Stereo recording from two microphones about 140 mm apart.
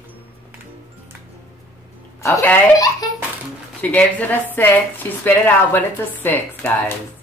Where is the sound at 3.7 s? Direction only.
10° left (ahead or behind).